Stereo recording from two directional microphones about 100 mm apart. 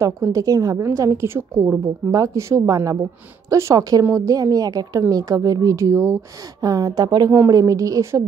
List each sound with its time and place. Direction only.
0.0 s a woman's voice: 30° right (ahead or behind)